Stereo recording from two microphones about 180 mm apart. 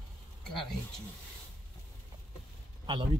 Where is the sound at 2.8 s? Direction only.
30° right (ahead or behind).